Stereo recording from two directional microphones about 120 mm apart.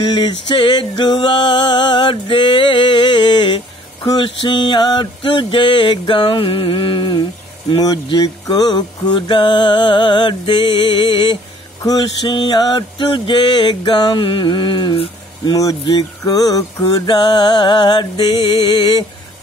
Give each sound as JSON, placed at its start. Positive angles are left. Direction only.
{"t": 0.0, "sound": "music", "side_deg": 40}
{"t": 7.8, "sound": "mantra", "side_deg": 35}
{"t": 11.8, "sound": "mantra", "side_deg": 35}